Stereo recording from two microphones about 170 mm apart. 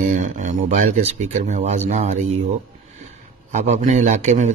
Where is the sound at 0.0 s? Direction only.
45° right (ahead or behind).